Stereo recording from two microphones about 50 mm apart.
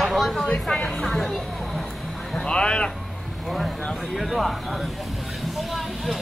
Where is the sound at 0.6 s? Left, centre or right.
Centre.